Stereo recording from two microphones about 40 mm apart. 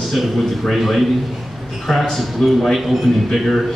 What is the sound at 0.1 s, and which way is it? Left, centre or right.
A man's voice, centre.